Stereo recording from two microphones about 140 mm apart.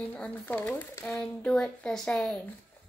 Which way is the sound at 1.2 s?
5° left (ahead or behind).